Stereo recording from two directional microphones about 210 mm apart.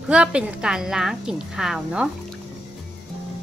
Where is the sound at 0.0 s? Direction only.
5° right (ahead or behind).